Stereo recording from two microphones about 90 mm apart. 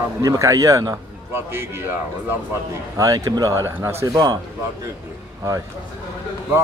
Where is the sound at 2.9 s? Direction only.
40° right (ahead or behind).